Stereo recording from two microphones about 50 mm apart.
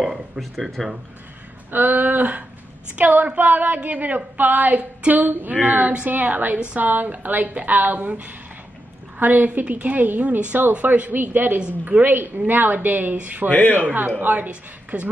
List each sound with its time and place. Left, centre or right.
0.4 s speech: centre
1.7 s a woman's voice: right
13.5 s a man's voice: left
13.8 s a woman's voice: right